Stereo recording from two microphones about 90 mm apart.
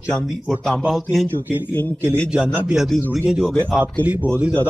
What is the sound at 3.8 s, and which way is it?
Speech, 20° right (ahead or behind).